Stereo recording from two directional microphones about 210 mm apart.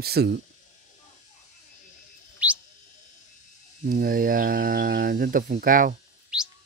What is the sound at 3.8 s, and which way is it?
Speech, 45° right (ahead or behind).